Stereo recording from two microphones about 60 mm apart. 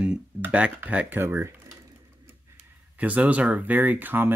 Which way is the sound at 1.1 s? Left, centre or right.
Right.